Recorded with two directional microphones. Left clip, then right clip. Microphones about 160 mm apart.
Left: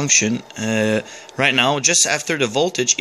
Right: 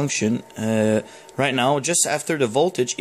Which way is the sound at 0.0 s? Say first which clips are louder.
Left 6 dB; 20° right (ahead or behind).